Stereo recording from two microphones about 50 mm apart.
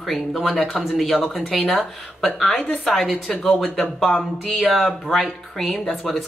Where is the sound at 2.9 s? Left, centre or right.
Centre.